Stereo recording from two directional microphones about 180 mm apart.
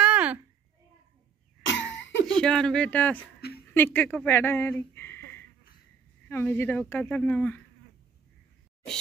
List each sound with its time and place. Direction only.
0.0 s babbling: 5° right (ahead or behind)
1.7 s cough: 90° left
2.2 s speech: 5° left (ahead or behind)
3.3 s a sound: 60° left (ahead or behind)
3.7 s a woman's voice: 10° left (ahead or behind)